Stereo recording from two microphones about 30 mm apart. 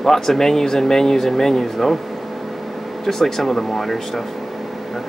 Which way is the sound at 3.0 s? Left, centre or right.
Centre.